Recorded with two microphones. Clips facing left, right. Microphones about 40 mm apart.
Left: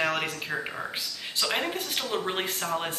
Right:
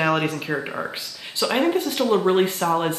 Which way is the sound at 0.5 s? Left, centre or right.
Right.